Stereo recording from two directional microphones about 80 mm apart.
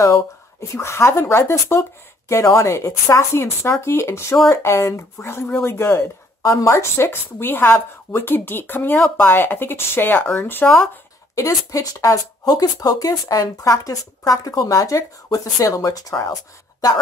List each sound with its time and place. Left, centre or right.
0.0 s speech: left
6.4 s speech: left
11.3 s speech: left